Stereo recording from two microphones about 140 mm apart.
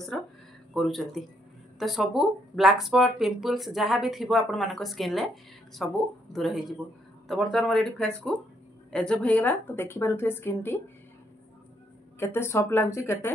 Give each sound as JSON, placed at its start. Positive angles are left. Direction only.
{"t": 0.7, "sound": "a woman's voice", "side_deg": 0}
{"t": 12.2, "sound": "a woman's voice", "side_deg": 15}